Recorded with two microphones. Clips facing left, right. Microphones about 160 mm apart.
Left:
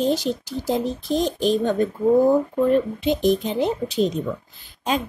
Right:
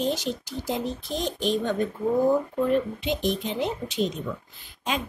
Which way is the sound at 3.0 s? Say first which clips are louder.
Left 7 dB; 40° left (ahead or behind).